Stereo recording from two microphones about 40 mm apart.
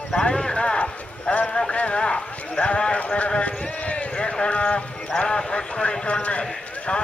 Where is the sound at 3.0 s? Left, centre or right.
Left.